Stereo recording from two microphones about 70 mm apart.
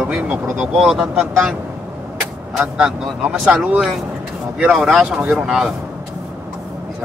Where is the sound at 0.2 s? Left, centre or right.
Centre.